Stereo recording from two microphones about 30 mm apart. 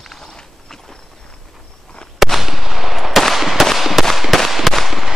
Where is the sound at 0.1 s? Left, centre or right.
Centre.